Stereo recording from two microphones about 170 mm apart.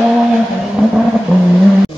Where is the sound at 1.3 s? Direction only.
5° right (ahead or behind).